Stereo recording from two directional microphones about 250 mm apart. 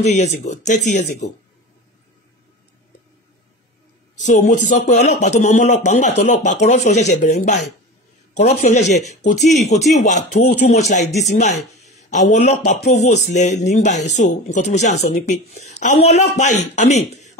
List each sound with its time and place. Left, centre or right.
0.0 s a man's voice: left
4.2 s a man's voice: left